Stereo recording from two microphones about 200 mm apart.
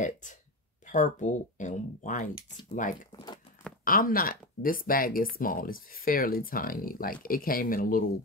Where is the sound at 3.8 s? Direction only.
45° left (ahead or behind).